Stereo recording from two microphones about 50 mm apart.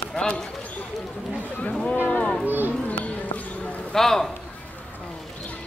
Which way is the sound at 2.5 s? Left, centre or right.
Right.